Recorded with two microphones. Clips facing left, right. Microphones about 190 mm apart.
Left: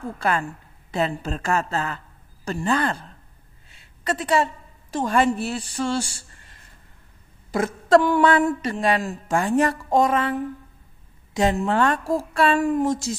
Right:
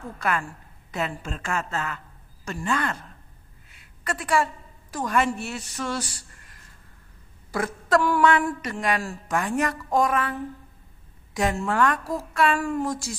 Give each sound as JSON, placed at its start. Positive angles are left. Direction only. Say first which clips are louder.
{"t": 0.2, "sound": "a woman's voice", "louder": "left 3 dB", "side_deg": 25}
{"t": 3.7, "sound": "a sound", "louder": "left 5 dB", "side_deg": 25}
{"t": 4.9, "sound": "a woman's voice", "louder": "left 4 dB", "side_deg": 30}